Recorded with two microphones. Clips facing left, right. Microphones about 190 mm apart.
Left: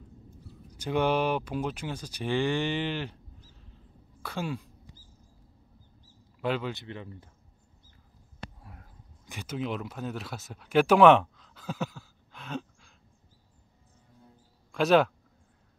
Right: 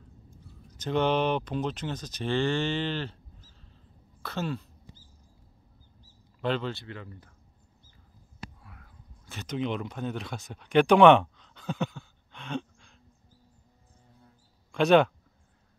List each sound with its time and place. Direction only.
0.7 s speech: 10° left (ahead or behind)
6.4 s speech: 10° left (ahead or behind)
8.6 s a sound: 40° left (ahead or behind)
9.2 s speech: 10° left (ahead or behind)
14.7 s speech: centre (ahead or behind)